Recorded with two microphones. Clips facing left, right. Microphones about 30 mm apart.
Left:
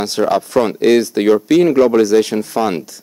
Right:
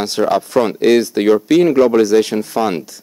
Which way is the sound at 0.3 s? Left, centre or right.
Centre.